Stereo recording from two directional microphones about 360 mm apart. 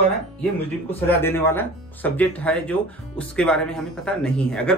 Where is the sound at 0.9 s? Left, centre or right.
Centre.